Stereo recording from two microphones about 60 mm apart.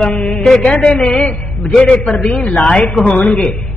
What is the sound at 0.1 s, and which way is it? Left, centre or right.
A man's voice, centre.